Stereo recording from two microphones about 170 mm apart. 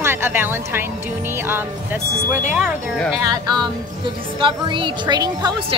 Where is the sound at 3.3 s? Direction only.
25° right (ahead or behind).